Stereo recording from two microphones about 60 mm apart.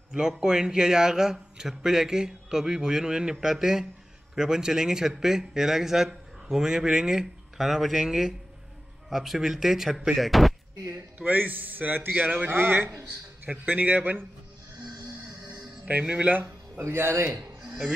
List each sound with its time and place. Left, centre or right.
0.3 s speech: centre
11.1 s a man's voice: right
15.8 s speech: centre
16.3 s a man's voice: right
17.6 s a sound: centre